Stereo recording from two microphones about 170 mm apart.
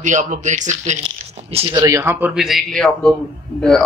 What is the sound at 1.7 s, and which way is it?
Speech, 20° right (ahead or behind).